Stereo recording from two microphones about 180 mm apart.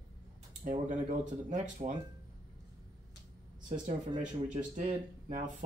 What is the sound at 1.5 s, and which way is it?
Speech, 45° right (ahead or behind).